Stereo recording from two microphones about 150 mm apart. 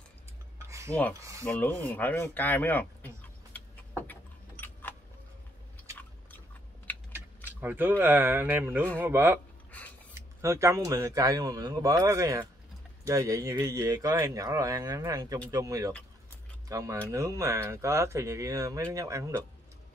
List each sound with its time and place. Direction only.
0.6 s cutlery: 20° right (ahead or behind)
1.4 s speech: 10° left (ahead or behind)
3.5 s keys jangling: 10° left (ahead or behind)
6.9 s a sound: 10° left (ahead or behind)
7.6 s speech: 15° right (ahead or behind)
9.7 s a sound: 10° left (ahead or behind)
10.1 s speech: 20° right (ahead or behind)